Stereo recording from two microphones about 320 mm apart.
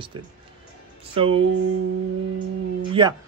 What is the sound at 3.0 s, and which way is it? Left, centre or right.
Speech, centre.